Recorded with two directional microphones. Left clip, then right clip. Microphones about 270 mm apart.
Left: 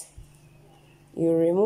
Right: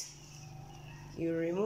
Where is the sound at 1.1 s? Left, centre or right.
Left.